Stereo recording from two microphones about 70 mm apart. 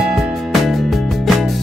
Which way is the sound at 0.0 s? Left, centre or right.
Centre.